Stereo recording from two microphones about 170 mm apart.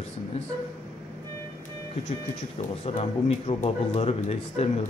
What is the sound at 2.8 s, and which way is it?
Speech, 35° left (ahead or behind).